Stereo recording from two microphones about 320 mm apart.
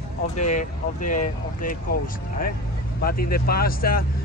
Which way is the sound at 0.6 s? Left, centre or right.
Left.